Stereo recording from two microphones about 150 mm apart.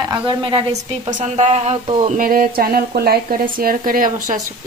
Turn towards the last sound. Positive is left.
turn(degrees=-70)  # may be behind; listen again after turning